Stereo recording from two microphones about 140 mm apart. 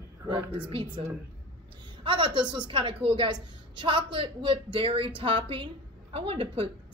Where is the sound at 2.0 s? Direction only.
35° right (ahead or behind).